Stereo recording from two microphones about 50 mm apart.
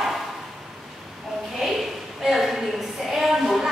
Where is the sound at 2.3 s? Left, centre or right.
Centre.